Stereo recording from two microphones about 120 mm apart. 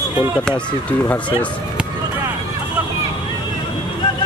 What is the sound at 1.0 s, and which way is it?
Speech, 10° left (ahead or behind).